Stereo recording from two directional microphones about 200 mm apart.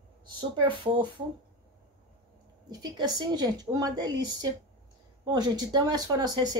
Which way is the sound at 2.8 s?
20° right (ahead or behind).